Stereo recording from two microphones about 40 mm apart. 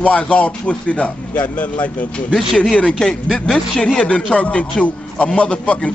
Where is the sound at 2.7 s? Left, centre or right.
Centre.